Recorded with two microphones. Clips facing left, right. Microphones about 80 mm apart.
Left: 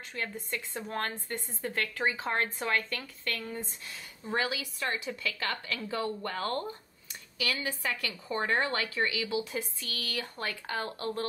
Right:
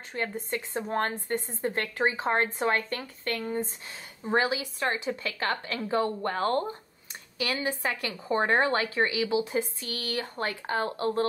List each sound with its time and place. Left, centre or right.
0.1 s a woman's voice: right